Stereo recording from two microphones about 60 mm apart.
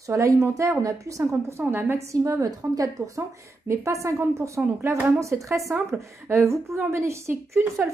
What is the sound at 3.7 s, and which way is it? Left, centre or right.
Speech, right.